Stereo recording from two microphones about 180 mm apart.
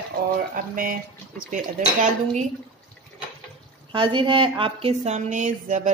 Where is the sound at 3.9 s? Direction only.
25° right (ahead or behind); by 5.9 s 40° right (ahead or behind).